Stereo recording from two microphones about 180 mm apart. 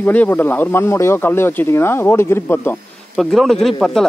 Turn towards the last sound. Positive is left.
turn(degrees=0)  # may be behind; listen again after turning